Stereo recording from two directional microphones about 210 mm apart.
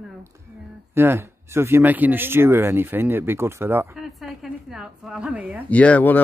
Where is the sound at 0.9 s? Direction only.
10° right (ahead or behind).